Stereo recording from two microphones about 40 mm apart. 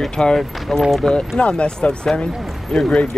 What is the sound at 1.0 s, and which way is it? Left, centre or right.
Speech, centre.